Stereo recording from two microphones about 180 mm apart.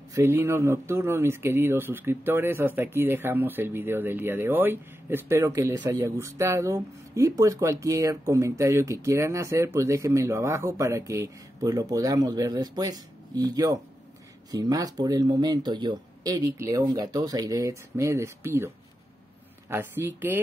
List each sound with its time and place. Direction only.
0.1 s speech: 15° right (ahead or behind)
19.7 s speech: 15° right (ahead or behind)